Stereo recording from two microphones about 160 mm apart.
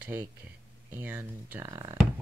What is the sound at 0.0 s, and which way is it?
Speech, 10° right (ahead or behind).